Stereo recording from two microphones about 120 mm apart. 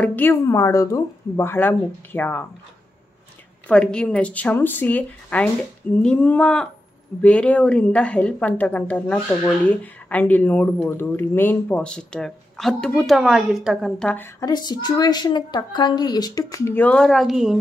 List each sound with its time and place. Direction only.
0.0 s a woman's voice: 15° left (ahead or behind)
0.5 s speech: 25° left (ahead or behind)
3.6 s a woman's voice: 10° left (ahead or behind)
14.0 s a woman's voice: 15° left (ahead or behind)
14.4 s a woman's voice: 35° left (ahead or behind)
16.7 s a woman's voice: 10° left (ahead or behind)